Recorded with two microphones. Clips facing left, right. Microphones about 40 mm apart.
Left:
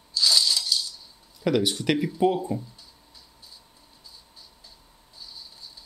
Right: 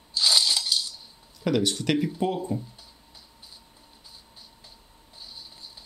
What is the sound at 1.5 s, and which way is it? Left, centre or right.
Speech, centre.